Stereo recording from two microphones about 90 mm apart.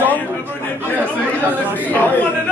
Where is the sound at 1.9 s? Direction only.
20° left (ahead or behind).